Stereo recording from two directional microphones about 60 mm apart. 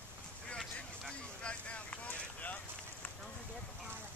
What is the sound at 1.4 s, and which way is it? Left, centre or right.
Vehicle, left.